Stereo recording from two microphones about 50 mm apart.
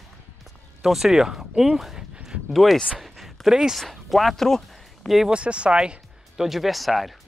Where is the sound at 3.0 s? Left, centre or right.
Centre.